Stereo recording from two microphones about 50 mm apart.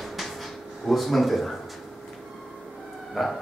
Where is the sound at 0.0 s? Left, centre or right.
Centre.